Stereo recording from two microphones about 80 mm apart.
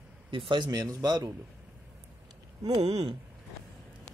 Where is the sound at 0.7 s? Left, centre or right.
Right.